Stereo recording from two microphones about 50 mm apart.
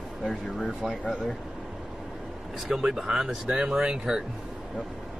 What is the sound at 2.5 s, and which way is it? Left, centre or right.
Speech, centre.